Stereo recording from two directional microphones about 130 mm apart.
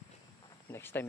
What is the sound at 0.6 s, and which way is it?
Speech, 20° left (ahead or behind).